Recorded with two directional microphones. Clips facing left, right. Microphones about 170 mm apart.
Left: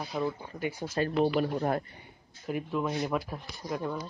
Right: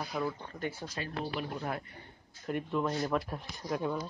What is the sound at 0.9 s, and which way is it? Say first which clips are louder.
Speech: left 10 dB; 50° left (ahead or behind).